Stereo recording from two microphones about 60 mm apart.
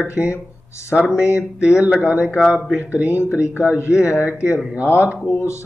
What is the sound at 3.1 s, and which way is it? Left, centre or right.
Speech, left.